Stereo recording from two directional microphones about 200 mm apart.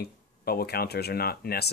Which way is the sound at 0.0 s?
50° left (ahead or behind).